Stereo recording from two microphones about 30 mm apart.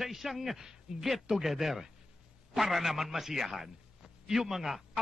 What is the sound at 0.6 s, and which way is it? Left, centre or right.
Speech, right.